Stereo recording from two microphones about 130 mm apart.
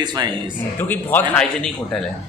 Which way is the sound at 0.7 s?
15° left (ahead or behind).